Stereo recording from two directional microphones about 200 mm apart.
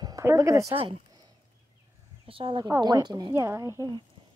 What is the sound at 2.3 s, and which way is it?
Speech, 25° right (ahead or behind).